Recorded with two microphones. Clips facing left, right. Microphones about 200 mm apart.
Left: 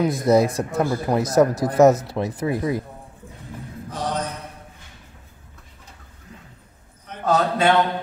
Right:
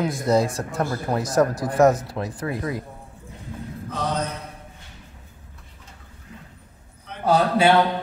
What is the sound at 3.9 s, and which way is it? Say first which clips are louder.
Mantra: even; 15° left (ahead or behind).